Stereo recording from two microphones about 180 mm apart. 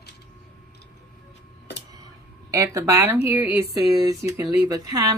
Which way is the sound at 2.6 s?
15° right (ahead or behind).